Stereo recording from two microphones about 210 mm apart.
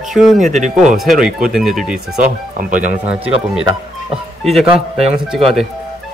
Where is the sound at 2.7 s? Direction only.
35° right (ahead or behind).